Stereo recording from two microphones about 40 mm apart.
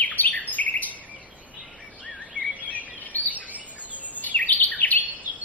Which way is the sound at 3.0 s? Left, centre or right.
Left.